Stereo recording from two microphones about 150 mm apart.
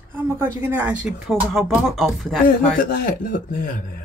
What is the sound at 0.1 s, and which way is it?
Speech, 15° right (ahead or behind).